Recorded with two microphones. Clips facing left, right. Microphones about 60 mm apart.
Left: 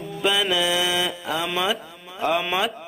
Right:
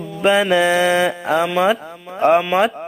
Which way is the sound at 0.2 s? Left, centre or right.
Right.